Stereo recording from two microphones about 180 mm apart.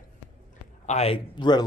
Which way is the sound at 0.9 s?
35° left (ahead or behind).